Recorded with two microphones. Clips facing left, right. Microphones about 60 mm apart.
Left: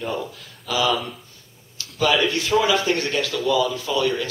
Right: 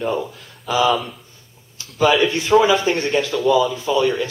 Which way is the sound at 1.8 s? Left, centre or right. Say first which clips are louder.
Right 4 dB; right.